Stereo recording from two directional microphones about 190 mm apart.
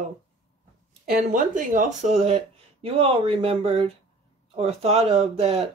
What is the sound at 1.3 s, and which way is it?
Speech, 40° right (ahead or behind).